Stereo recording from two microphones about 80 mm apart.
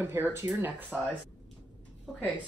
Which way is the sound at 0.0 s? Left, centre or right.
Right.